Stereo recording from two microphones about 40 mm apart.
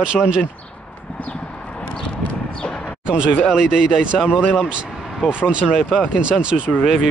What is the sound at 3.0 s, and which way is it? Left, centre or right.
Speech, right.